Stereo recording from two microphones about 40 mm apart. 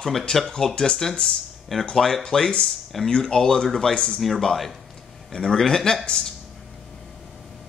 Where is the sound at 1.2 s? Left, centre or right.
Centre.